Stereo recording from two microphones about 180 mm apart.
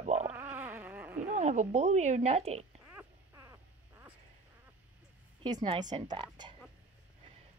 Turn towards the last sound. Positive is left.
turn(degrees=-25)  # may be behind; listen again after turning